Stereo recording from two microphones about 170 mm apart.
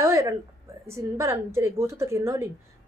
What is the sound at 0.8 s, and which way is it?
Speech, 15° right (ahead or behind).